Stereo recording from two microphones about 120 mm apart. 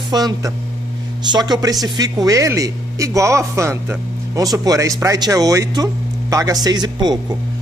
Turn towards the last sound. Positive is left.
turn(degrees=-35)  # may be behind; listen again after turning